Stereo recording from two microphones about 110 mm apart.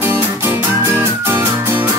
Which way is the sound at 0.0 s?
20° right (ahead or behind).